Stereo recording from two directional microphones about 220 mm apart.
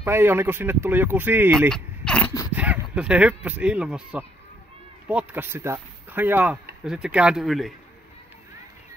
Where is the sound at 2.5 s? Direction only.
5° right (ahead or behind).